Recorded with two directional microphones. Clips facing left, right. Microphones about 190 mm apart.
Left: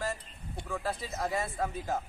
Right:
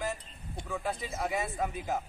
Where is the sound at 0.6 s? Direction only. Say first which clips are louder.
Even; centre (ahead or behind).